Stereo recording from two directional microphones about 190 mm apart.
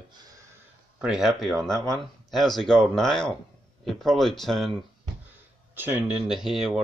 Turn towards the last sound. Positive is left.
turn(degrees=0)  # may be behind; listen again after turning